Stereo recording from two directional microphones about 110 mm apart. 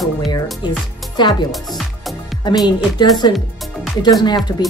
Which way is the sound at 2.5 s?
40° left (ahead or behind).